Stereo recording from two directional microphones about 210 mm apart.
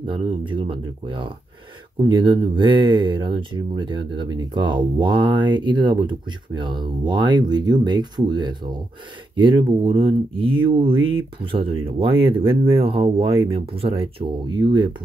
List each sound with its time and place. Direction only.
0.0 s speech: 25° right (ahead or behind)